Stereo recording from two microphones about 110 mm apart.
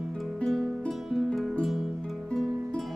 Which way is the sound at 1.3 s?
Centre (ahead or behind).